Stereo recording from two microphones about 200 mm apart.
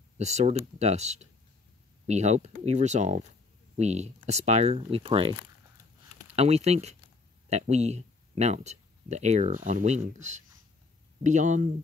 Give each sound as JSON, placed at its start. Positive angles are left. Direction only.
{"t": 0.2, "sound": "speech", "side_deg": -35}
{"t": 6.3, "sound": "speech", "side_deg": -30}